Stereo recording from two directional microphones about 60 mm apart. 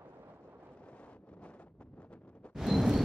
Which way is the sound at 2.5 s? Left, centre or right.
Centre.